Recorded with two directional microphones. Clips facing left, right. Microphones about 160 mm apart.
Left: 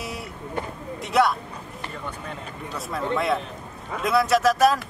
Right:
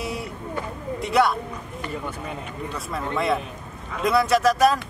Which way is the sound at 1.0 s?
Centre (ahead or behind).